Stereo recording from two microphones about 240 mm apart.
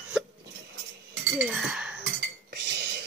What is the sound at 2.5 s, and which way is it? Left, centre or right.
Cutlery, right.